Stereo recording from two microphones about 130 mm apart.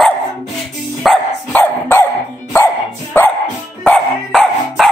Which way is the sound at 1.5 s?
15° left (ahead or behind).